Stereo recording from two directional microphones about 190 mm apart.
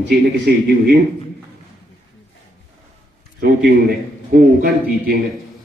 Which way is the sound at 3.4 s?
60° right (ahead or behind).